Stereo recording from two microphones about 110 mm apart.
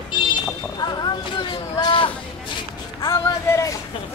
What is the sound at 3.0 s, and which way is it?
Music, 30° left (ahead or behind).